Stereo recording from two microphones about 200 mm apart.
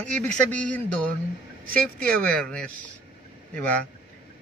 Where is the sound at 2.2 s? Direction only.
5° left (ahead or behind).